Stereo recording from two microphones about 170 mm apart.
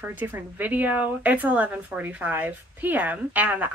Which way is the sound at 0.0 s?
10° right (ahead or behind).